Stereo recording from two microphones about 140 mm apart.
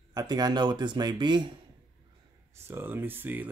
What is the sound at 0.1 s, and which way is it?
Speech, 30° right (ahead or behind).